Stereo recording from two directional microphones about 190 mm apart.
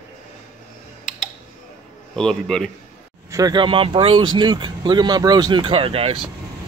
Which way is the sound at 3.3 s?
20° right (ahead or behind).